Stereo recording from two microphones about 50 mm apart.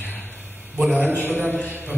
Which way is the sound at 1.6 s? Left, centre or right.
Right.